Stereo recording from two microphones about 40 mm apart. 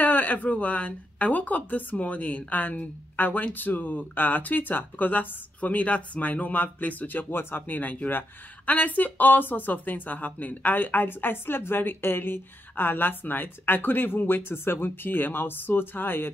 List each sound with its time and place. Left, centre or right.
0.0 s speech: left
7.2 s speech: left